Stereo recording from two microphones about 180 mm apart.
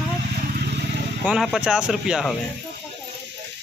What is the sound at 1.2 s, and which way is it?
Speech, centre (ahead or behind).